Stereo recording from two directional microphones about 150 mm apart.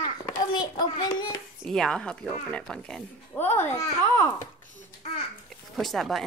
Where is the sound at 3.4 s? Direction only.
15° left (ahead or behind).